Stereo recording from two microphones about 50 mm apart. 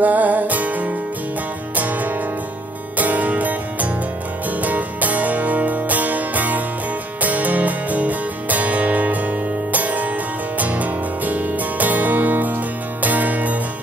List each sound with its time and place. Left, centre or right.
0.0 s music: right